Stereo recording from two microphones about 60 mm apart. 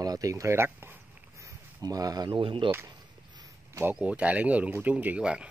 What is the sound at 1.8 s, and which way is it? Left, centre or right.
Speech, right.